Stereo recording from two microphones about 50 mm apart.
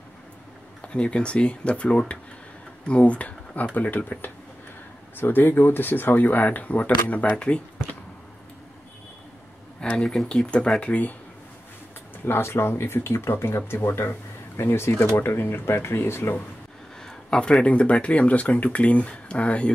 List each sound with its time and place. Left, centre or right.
0.9 s speech: centre
9.8 s speech: centre
12.3 s speech: left
13.8 s speech: left
17.3 s speech: centre